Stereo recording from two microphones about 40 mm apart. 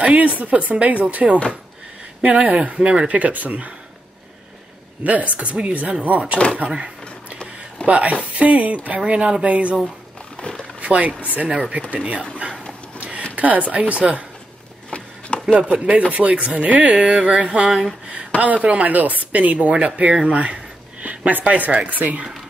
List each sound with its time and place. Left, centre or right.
0.0 s speech: right
5.0 s speech: right
6.6 s drawer open or close: right
7.8 s speech: right
9.1 s speech: right
10.8 s speech: right
13.4 s speech: right
14.9 s a sound: left
15.6 s speech: right
16.9 s a sound: right
18.4 s speech: right